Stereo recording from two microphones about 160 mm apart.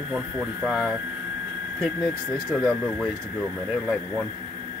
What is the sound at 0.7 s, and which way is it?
Speech, centre (ahead or behind).